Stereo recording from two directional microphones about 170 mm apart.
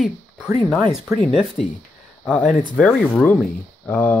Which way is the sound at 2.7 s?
5° left (ahead or behind).